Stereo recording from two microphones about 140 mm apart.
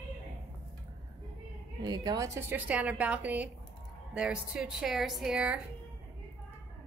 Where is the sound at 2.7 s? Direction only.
10° right (ahead or behind).